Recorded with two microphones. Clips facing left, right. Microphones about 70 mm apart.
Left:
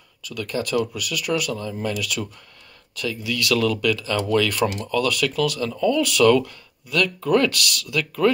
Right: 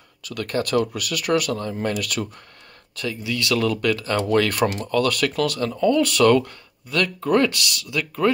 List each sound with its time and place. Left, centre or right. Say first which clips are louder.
0.2 s speech: right 2 dB; right
3.0 s speech: even; right
7.4 s speech: left 1 dB; right